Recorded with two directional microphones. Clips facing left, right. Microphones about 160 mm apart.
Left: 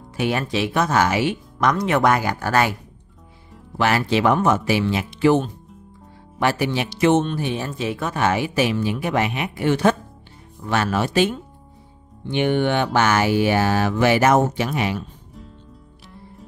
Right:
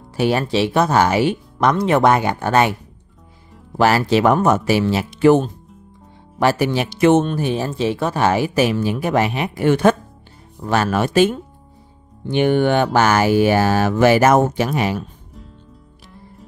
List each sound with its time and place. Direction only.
0.1 s speech: 35° right (ahead or behind)
3.7 s speech: 40° right (ahead or behind)
9.7 s speech: 50° right (ahead or behind)
10.6 s speech: 40° right (ahead or behind)
10.9 s speech: 50° right (ahead or behind)